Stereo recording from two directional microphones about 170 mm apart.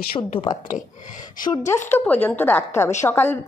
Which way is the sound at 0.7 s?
50° left (ahead or behind).